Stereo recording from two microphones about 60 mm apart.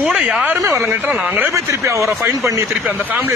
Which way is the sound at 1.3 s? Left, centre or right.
Right.